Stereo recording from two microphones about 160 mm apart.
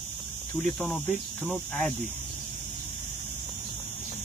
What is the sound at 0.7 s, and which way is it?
Speech, centre (ahead or behind).